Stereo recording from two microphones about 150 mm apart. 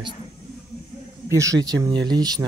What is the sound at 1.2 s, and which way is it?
Speech, 20° right (ahead or behind).